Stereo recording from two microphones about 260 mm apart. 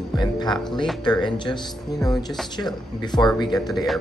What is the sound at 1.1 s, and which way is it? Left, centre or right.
Speech, centre.